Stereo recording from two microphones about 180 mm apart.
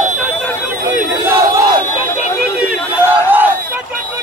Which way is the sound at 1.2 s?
15° right (ahead or behind).